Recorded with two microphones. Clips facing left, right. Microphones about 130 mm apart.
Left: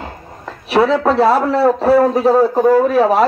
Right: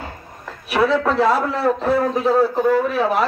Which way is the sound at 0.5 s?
30° left (ahead or behind).